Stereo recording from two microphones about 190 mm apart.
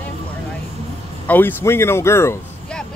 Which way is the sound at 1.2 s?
10° left (ahead or behind).